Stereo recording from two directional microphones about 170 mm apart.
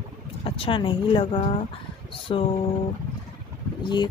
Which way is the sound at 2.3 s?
30° left (ahead or behind).